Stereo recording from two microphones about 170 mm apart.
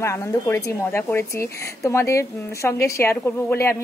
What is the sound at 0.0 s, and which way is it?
Speech, 15° left (ahead or behind).